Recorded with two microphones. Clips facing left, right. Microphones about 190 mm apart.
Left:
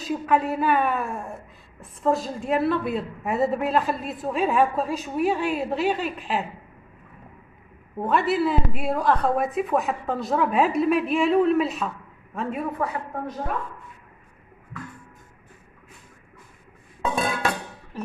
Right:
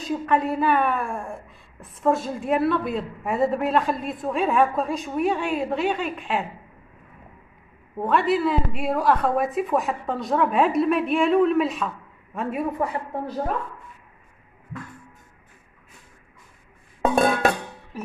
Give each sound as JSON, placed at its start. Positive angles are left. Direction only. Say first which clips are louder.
{"t": 0.0, "sound": "a woman's voice", "louder": "even", "side_deg": 5}
{"t": 8.0, "sound": "a woman's voice", "louder": "right 1 dB", "side_deg": 0}
{"t": 12.7, "sound": "speech", "louder": "right 2 dB", "side_deg": -30}
{"t": 17.0, "sound": "a sound", "louder": "right 6 dB", "side_deg": -50}